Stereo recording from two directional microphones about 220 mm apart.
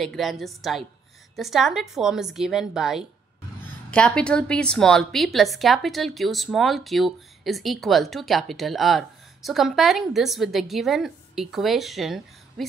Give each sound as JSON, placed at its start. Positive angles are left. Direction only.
{"t": 0.0, "sound": "a woman's voice", "side_deg": 0}